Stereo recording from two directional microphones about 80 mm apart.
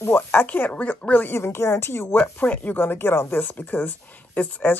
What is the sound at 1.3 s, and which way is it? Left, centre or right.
Speech, left.